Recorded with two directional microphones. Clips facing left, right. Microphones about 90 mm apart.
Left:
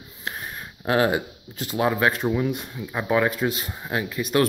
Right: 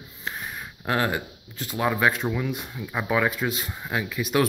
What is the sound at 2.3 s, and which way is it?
Speech, 20° left (ahead or behind).